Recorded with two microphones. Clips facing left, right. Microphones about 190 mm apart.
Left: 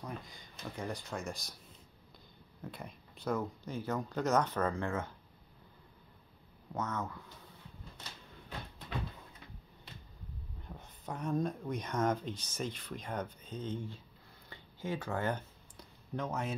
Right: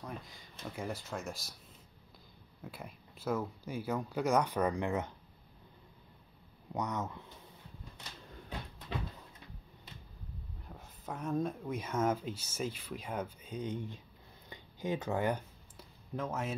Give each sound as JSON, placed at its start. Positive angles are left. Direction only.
{"t": 0.0, "sound": "speech", "side_deg": 0}
{"t": 2.6, "sound": "speech", "side_deg": -5}
{"t": 6.7, "sound": "speech", "side_deg": -15}
{"t": 10.7, "sound": "speech", "side_deg": -5}
{"t": 14.5, "sound": "a sound", "side_deg": -15}